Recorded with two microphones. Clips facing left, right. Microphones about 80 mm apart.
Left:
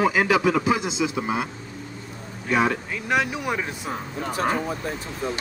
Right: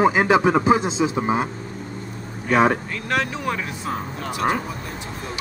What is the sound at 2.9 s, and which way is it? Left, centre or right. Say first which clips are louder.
Speech: even; centre.